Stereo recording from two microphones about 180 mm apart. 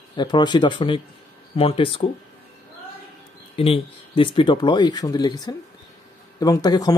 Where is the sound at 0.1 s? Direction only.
25° left (ahead or behind).